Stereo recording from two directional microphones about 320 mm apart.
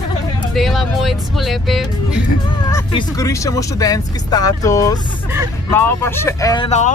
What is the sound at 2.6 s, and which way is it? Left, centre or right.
Speech, centre.